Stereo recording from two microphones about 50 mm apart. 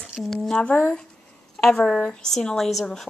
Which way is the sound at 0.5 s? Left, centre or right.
Left.